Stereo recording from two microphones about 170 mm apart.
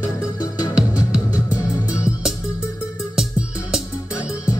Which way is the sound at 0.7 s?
5° right (ahead or behind).